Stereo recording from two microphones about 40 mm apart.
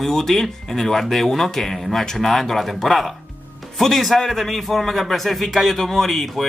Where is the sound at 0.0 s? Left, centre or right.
Centre.